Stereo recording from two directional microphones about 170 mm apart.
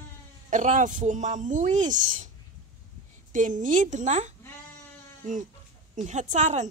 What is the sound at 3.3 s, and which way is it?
Speech, 50° right (ahead or behind).